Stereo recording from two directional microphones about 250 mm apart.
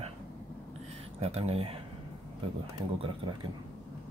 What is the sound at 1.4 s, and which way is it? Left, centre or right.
Speech, right.